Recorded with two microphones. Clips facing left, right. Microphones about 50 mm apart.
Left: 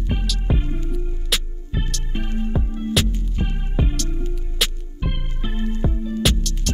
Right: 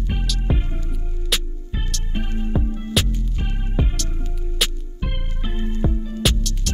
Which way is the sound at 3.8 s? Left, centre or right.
Centre.